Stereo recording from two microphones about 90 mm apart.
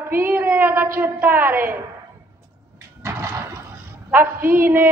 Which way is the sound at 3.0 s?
30° right (ahead or behind).